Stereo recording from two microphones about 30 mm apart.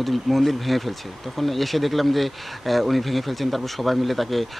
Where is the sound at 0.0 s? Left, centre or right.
Centre.